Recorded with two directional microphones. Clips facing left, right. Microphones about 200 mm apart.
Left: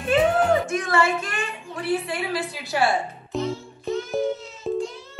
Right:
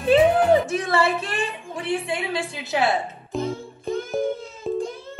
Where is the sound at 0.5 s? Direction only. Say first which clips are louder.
Right 3 dB; 35° right (ahead or behind).